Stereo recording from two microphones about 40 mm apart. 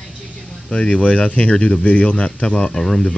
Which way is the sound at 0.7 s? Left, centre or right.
Left.